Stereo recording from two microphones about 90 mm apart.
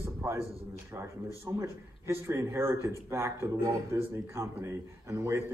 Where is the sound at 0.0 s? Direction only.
30° right (ahead or behind).